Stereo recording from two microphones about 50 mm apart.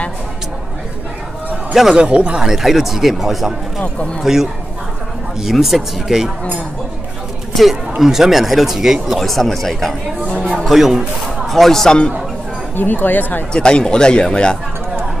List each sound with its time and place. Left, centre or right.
1.7 s a man's voice: centre
2.0 s speech: right
2.4 s speech: centre
3.8 s speech: left
4.2 s speech: centre
8.0 s speech: centre
9.2 s speech: centre
11.4 s speech: centre
12.7 s speech: left
13.5 s speech: centre